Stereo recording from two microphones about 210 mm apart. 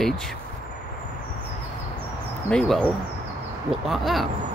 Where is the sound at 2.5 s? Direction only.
5° left (ahead or behind).